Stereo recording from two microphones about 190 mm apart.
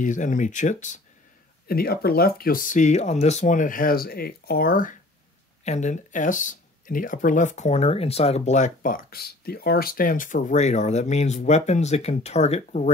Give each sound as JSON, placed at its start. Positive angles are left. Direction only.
{"t": 0.0, "sound": "speech", "side_deg": 40}
{"t": 1.7, "sound": "speech", "side_deg": 55}